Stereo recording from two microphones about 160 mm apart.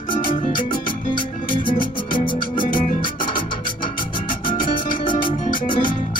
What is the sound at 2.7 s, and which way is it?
Music, 60° left (ahead or behind).